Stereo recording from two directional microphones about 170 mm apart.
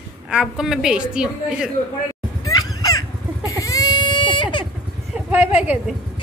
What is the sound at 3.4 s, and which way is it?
Baby cry, 20° left (ahead or behind).